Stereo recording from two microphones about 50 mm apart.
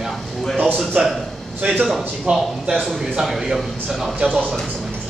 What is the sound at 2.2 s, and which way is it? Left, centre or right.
A man's voice, centre.